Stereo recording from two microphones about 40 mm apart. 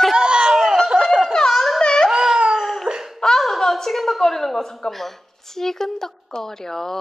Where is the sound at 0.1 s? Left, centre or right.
Centre.